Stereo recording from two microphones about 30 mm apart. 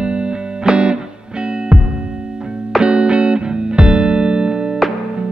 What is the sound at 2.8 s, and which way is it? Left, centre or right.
Music, right.